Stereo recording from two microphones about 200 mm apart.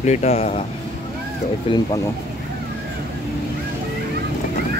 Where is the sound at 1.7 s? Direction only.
25° left (ahead or behind).